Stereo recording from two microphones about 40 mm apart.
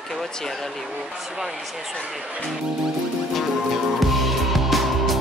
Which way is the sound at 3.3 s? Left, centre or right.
Centre.